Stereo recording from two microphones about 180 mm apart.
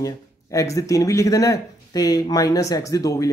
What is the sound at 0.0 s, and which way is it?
Speech, 20° left (ahead or behind).